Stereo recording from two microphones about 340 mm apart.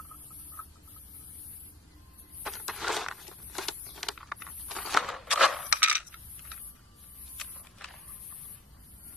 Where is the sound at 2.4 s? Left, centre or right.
Centre.